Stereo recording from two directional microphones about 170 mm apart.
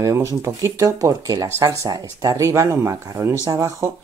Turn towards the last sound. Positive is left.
turn(degrees=-20)  # may be behind; listen again after turning